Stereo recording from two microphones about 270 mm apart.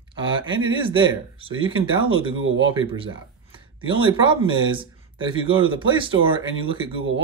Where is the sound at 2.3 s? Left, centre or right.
Right.